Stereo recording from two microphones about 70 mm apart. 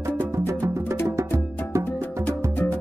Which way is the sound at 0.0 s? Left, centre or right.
Right.